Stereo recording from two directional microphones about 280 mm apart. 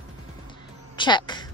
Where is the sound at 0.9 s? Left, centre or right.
Centre.